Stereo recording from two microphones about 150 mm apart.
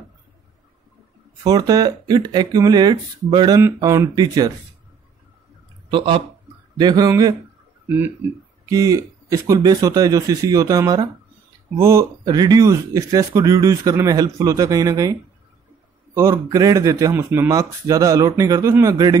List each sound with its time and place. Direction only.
1.4 s speech: 25° right (ahead or behind)
5.9 s speech: 35° right (ahead or behind)
8.6 s speech: 20° right (ahead or behind)
16.2 s speech: 20° right (ahead or behind)